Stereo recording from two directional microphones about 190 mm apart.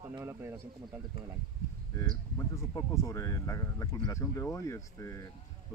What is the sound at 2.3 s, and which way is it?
Speech, 15° left (ahead or behind).